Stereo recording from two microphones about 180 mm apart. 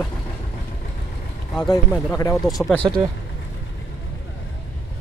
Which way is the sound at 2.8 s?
25° right (ahead or behind).